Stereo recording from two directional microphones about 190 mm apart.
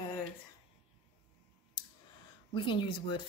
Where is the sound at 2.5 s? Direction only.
25° left (ahead or behind).